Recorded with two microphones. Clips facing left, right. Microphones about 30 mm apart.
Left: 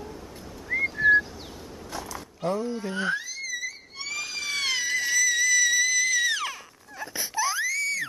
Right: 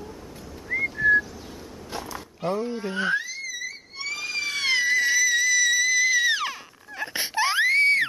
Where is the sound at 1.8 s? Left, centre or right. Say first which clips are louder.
Right 2 dB; right.